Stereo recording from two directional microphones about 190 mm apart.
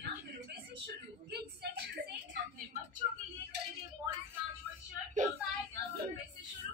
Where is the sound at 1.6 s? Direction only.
60° right (ahead or behind).